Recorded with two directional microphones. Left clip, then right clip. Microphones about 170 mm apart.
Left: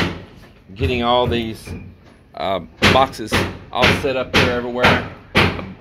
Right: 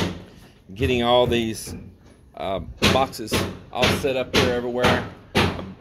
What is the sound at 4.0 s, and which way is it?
Speech, 25° right (ahead or behind).